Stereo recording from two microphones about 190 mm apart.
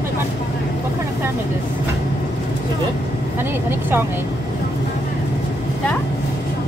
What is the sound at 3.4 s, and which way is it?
Speech, 10° right (ahead or behind).